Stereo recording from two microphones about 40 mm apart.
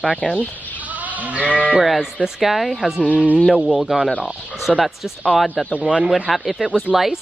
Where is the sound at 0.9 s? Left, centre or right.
Right.